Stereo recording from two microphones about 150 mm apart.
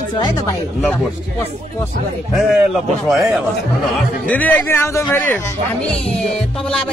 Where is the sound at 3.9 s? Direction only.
10° left (ahead or behind).